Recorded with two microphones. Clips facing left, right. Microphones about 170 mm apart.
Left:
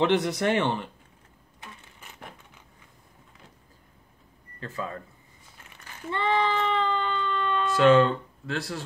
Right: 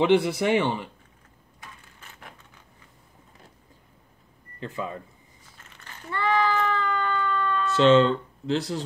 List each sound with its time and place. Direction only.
0.0 s speech: 10° right (ahead or behind)
4.6 s speech: 20° right (ahead or behind)
5.7 s a sound: 20° left (ahead or behind)
7.7 s speech: 25° right (ahead or behind)